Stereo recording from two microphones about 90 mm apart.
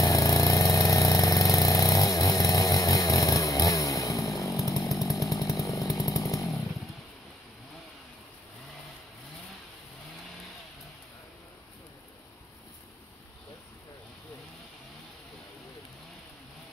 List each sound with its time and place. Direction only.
0.0 s vehicle: 40° left (ahead or behind)
4.8 s chainsaw: 40° left (ahead or behind)